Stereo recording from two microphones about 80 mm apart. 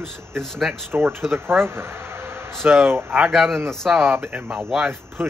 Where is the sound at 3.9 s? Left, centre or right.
Centre.